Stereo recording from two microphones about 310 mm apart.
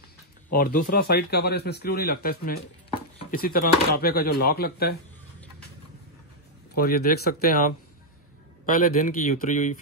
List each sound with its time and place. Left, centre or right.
0.5 s speech: left
6.7 s speech: left
8.7 s speech: left